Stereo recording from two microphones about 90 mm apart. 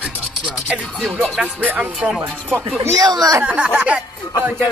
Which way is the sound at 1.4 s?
15° right (ahead or behind).